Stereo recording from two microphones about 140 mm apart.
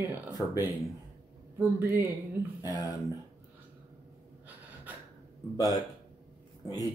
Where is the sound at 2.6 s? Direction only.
25° left (ahead or behind).